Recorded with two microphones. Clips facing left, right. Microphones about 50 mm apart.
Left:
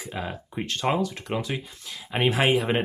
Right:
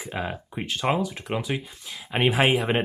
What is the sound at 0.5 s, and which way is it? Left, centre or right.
Speech, centre.